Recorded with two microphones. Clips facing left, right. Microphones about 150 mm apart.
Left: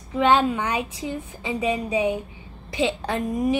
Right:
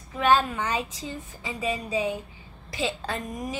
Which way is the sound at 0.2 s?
20° left (ahead or behind).